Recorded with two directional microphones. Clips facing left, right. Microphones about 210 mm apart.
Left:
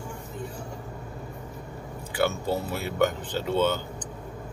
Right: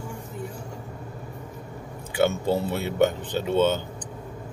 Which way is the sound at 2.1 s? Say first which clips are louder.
Right 4 dB; 20° right (ahead or behind).